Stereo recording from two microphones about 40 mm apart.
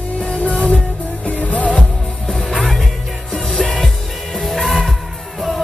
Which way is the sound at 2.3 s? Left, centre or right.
Centre.